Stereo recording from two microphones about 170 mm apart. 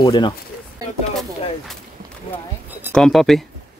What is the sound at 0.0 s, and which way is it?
Speech, 25° left (ahead or behind).